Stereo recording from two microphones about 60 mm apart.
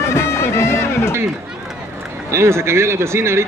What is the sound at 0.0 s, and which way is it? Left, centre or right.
Music, left.